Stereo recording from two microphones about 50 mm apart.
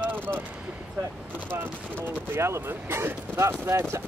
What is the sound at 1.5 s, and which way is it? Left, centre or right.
Speech, right.